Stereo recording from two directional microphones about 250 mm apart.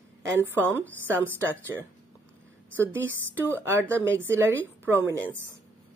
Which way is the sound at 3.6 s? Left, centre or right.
Centre.